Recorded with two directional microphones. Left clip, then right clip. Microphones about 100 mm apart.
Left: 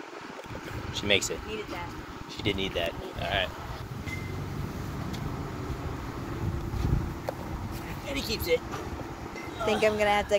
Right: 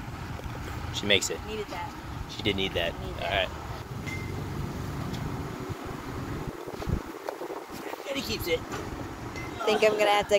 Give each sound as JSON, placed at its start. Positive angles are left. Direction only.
{"t": 0.9, "sound": "speech", "side_deg": -20}
{"t": 2.4, "sound": "speech", "side_deg": -25}
{"t": 9.7, "sound": "speech", "side_deg": -50}